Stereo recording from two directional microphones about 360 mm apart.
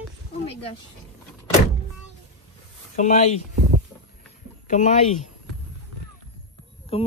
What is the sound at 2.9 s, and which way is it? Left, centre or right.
Speech, centre.